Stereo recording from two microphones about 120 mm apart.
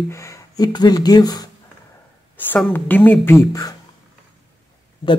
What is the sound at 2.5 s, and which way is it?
Speech, 15° left (ahead or behind).